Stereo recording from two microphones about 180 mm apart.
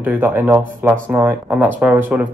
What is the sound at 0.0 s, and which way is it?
Speech, 10° right (ahead or behind).